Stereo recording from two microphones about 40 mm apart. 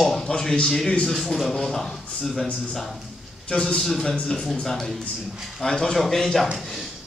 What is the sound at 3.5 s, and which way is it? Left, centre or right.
Speech, left.